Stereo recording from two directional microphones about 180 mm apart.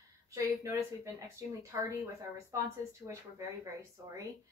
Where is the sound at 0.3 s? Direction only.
15° right (ahead or behind).